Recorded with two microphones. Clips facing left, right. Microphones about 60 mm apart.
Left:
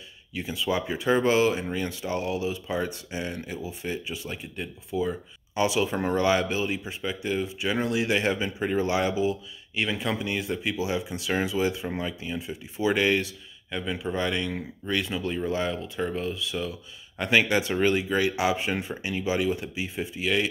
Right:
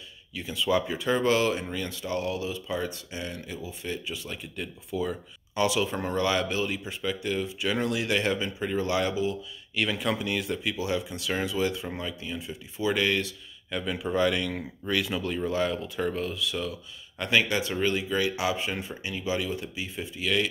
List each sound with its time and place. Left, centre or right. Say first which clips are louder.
0.4 s speech: right 1 dB; centre
12.8 s speech: left 3 dB; left
13.7 s speech: even; centre
17.2 s speech: left 3 dB; left